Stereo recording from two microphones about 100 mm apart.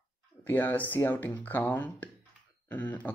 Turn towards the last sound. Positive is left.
turn(degrees=15)  # may be behind; listen again after turning